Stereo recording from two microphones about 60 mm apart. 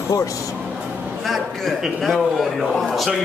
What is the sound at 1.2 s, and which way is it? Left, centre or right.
A man's voice, centre.